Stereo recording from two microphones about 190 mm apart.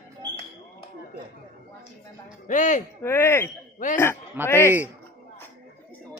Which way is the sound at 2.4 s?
40° left (ahead or behind).